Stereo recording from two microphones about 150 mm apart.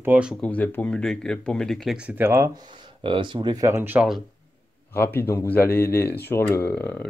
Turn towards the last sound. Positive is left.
turn(degrees=10)  # may be behind; listen again after turning